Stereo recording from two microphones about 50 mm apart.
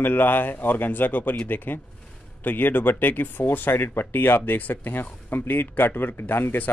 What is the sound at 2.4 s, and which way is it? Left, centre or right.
Speech, left.